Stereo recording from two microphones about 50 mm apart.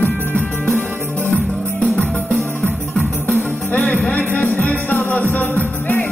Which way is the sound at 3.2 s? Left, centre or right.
Left.